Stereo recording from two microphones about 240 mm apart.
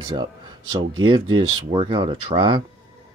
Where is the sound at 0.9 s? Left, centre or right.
Right.